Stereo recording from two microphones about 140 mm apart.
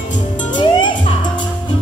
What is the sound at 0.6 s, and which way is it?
Music, 35° left (ahead or behind).